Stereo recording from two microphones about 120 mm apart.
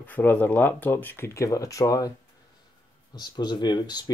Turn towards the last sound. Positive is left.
turn(degrees=35)  # may be behind; listen again after turning